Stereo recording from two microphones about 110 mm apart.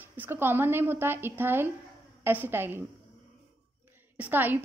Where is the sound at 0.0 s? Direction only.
20° right (ahead or behind).